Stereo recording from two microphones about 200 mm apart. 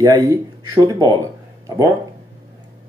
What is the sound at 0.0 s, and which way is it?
Speech, 15° right (ahead or behind).